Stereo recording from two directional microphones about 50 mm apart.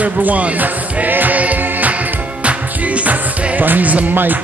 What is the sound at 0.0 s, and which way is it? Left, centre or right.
Speech, right.